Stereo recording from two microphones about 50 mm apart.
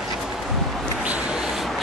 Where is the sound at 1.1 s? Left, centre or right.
Centre.